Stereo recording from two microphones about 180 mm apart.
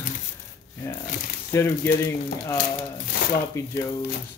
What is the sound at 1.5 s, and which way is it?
Speech, 15° left (ahead or behind).